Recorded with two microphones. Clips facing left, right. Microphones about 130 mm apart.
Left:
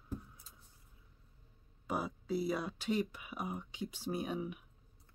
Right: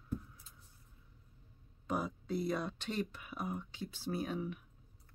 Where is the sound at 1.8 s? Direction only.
5° left (ahead or behind).